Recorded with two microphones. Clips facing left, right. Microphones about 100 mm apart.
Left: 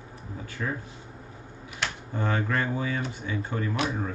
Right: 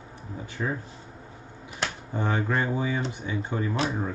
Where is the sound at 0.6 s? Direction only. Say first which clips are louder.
Right 2 dB; 30° right (ahead or behind).